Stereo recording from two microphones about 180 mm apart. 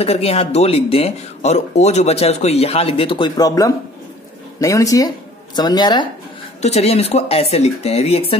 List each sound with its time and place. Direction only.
0.0 s speech: 35° left (ahead or behind)
6.6 s speech: 35° left (ahead or behind)